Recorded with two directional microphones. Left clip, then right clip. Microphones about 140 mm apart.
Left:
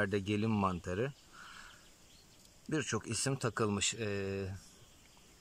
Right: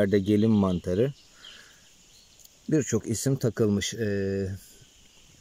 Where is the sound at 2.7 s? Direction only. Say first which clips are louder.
Right 10 dB; 30° right (ahead or behind).